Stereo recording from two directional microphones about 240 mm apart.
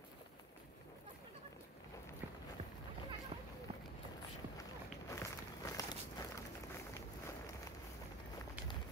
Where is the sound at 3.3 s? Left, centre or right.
Right.